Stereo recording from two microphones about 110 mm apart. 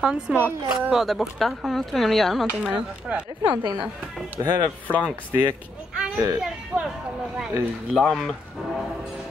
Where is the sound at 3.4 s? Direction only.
35° right (ahead or behind).